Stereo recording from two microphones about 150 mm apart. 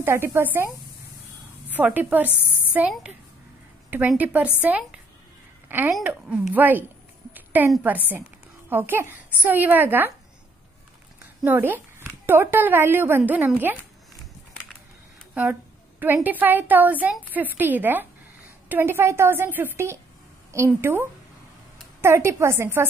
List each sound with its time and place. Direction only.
0.0 s speech: 15° right (ahead or behind)
1.7 s speech: 10° right (ahead or behind)
4.2 s speech: 10° right (ahead or behind)
7.3 s a sound: 10° right (ahead or behind)
8.6 s speech: 15° right (ahead or behind)
11.4 s speech: 15° right (ahead or behind)
16.0 s speech: 10° right (ahead or behind)